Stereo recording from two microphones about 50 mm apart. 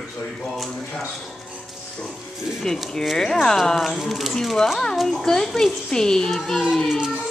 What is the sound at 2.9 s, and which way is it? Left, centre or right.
Speech, centre.